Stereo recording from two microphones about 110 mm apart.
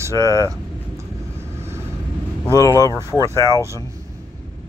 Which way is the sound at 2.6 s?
35° left (ahead or behind).